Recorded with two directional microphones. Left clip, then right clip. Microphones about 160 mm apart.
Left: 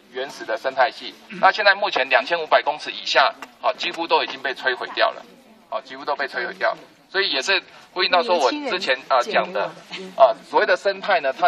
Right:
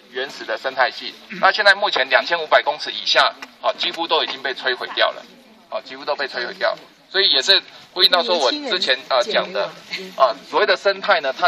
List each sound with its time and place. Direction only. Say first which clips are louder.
0.1 s a man's voice: right 1 dB; 25° left (ahead or behind); by 10.2 s 40° left (ahead or behind)
10.2 s a man's voice: left 1 dB; 60° left (ahead or behind)